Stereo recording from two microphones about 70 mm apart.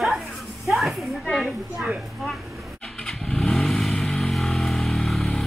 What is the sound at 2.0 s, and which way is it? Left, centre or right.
Vehicle, centre.